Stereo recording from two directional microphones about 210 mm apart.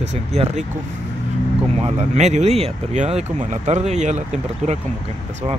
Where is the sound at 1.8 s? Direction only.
30° right (ahead or behind).